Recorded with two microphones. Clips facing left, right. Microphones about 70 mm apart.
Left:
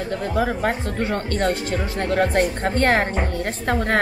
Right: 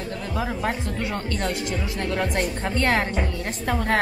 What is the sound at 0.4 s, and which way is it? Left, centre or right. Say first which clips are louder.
Speech: left 4 dB; left.